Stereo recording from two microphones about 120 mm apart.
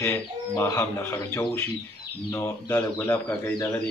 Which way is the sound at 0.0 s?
20° left (ahead or behind).